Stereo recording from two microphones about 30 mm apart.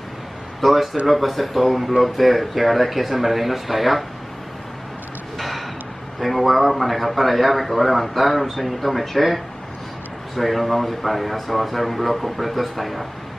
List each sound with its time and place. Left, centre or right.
0.6 s a man's voice: centre
6.1 s a man's voice: centre